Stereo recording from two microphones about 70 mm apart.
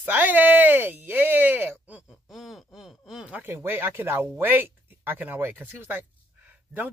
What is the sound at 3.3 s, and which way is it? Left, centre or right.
Speech, right.